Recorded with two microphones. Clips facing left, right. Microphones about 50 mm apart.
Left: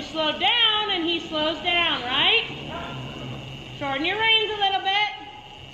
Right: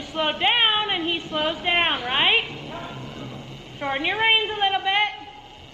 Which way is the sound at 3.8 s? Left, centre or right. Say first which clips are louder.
Right 1 dB; right.